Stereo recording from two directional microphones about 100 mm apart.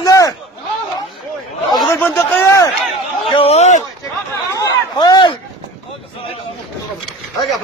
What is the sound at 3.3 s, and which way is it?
Speech, 80° left.